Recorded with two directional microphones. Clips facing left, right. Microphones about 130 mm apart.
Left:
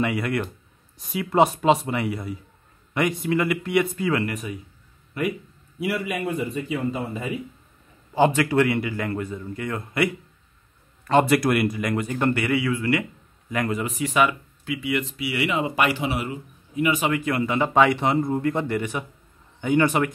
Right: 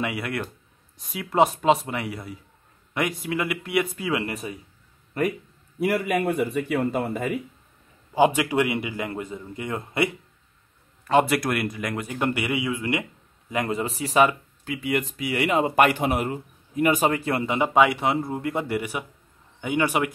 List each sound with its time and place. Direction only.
0.0 s a man's voice: 5° right (ahead or behind)
4.3 s speech: 30° right (ahead or behind)
5.2 s a man's voice: 45° right (ahead or behind)
8.1 s a man's voice: 10° right (ahead or behind)
11.1 s a man's voice: 5° right (ahead or behind); by 17.6 s 30° right (ahead or behind)
17.6 s a man's voice: 10° right (ahead or behind)